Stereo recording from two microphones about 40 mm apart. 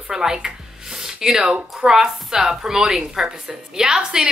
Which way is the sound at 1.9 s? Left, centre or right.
Centre.